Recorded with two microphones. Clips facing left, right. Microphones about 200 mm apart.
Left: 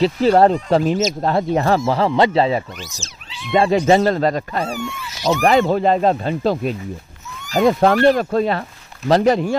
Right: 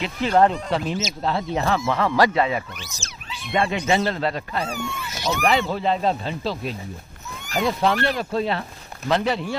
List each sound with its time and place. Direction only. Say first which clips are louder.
0.0 s speech: left 6 dB; 35° left (ahead or behind)
3.0 s speech: left 1 dB; 55° right (ahead or behind)
3.5 s speech: left 7 dB; 35° left (ahead or behind)